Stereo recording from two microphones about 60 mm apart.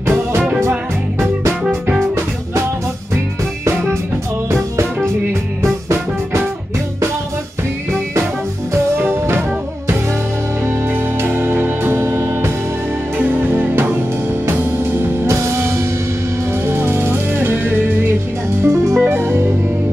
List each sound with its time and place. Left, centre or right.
0.0 s music: right
8.9 s music: right
10.6 s music: right
18.6 s music: right